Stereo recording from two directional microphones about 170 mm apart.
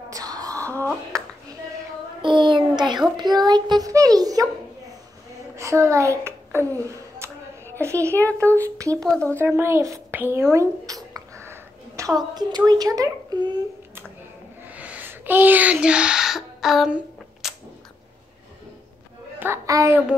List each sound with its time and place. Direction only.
0.1 s a sound: 20° right (ahead or behind)
0.7 s speech: 10° left (ahead or behind)
2.2 s child singing: 30° right (ahead or behind)
3.3 s speech: 25° right (ahead or behind)
5.6 s a child's voice: 15° right (ahead or behind)
6.8 s a sound: 15° right (ahead or behind)
7.8 s a child's voice: 15° right (ahead or behind)
9.0 s speech: 5° left (ahead or behind)
9.4 s speech: 15° right (ahead or behind)
14.7 s a sound: 10° right (ahead or behind)
19.4 s a child's voice: 15° right (ahead or behind)